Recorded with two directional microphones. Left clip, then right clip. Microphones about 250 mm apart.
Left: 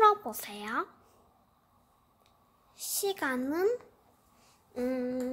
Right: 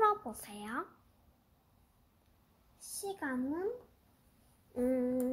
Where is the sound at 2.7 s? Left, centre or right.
Left.